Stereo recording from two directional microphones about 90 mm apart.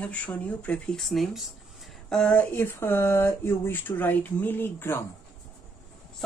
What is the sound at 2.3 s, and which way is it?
Speech, 25° left (ahead or behind).